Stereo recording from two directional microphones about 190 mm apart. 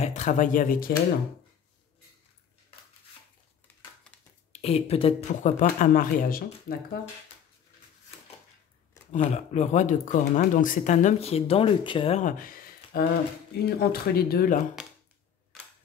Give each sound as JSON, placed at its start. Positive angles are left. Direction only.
{"t": 0.0, "sound": "speech", "side_deg": 40}
{"t": 4.5, "sound": "speech", "side_deg": 35}
{"t": 5.6, "sound": "speech", "side_deg": 45}
{"t": 9.1, "sound": "speech", "side_deg": 35}
{"t": 15.5, "sound": "camera", "side_deg": 0}